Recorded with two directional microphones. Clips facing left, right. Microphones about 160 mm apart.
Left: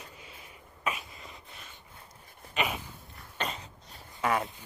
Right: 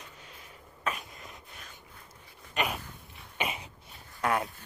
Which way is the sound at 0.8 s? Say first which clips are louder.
Even; centre (ahead or behind).